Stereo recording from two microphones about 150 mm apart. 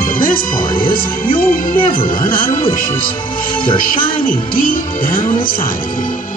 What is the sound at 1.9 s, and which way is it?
Speech, 70° left (ahead or behind).